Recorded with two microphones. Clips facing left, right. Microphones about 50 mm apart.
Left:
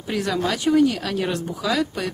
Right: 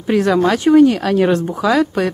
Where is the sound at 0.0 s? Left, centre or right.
Right.